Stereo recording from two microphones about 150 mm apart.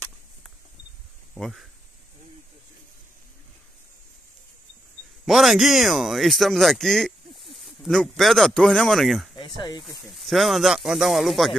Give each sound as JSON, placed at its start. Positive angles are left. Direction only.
{"t": 1.3, "sound": "speech", "side_deg": 0}
{"t": 5.2, "sound": "speech", "side_deg": 0}
{"t": 9.6, "sound": "speech", "side_deg": 30}
{"t": 10.0, "sound": "speech", "side_deg": 0}